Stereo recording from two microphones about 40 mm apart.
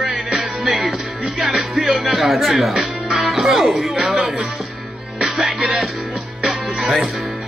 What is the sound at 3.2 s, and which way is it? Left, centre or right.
Speech, centre.